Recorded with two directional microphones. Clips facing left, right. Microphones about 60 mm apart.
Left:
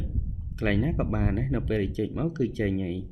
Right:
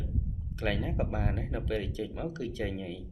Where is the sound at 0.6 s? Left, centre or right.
Left.